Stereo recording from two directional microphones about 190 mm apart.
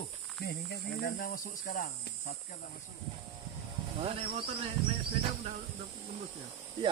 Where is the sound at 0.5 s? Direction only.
55° left (ahead or behind).